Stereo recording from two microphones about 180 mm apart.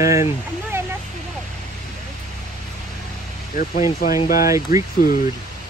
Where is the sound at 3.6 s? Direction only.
50° left (ahead or behind).